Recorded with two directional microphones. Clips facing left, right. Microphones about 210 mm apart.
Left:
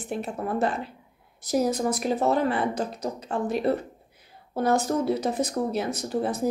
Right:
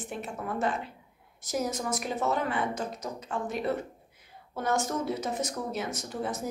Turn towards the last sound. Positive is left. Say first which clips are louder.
# left 7 dB
turn(degrees=35)  # may be behind; listen again after turning